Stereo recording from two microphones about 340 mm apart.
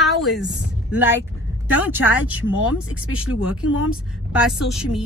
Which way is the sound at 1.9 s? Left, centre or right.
Centre.